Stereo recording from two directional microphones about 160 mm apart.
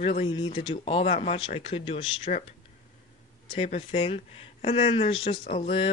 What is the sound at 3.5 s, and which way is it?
Speech, 40° left (ahead or behind).